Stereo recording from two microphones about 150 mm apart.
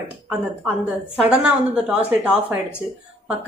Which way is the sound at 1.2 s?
10° right (ahead or behind).